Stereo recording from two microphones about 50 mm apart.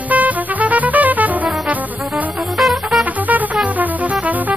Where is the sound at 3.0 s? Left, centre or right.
Right.